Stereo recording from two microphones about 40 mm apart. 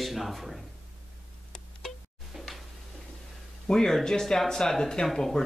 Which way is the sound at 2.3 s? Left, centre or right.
Centre.